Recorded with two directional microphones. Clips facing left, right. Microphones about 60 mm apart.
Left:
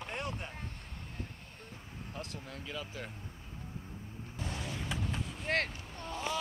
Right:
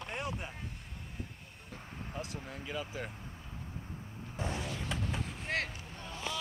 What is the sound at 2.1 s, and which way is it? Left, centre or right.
Speech, centre.